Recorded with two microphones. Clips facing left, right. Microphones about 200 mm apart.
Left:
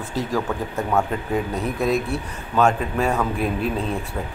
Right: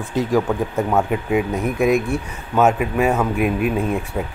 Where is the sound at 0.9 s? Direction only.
10° right (ahead or behind).